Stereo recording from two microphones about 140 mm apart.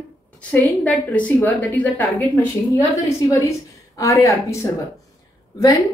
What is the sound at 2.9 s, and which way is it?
Speech, 20° left (ahead or behind).